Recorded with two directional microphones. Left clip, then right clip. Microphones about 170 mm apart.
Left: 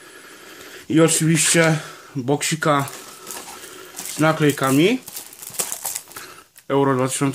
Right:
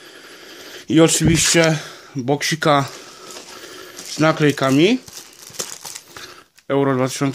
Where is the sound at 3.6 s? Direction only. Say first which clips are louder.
Right 1 dB; 45° right (ahead or behind).